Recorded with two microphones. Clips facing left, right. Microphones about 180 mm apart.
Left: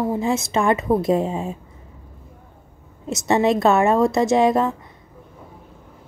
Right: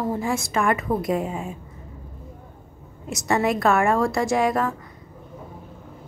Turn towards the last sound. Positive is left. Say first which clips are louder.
# left 5 dB
turn(degrees=25)  # may be behind; listen again after turning